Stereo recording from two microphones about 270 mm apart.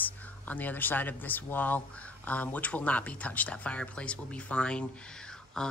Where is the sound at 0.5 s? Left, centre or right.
Centre.